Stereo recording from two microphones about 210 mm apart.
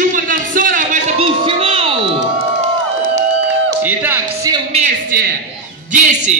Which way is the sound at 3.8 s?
10° right (ahead or behind).